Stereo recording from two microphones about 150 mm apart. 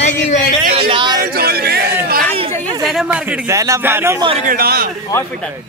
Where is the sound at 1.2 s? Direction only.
90° right.